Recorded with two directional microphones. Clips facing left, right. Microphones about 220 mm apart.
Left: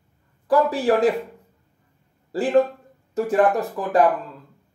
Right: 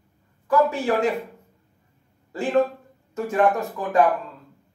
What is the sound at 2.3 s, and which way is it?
Speech, 35° left (ahead or behind).